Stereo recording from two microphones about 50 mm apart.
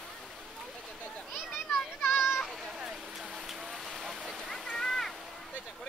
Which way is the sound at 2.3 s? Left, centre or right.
Centre.